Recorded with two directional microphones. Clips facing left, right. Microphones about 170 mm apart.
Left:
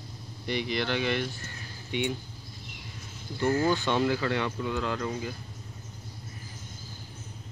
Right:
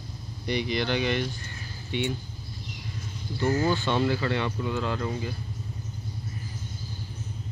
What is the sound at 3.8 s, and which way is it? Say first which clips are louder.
Speech: right 1 dB; 15° left (ahead or behind).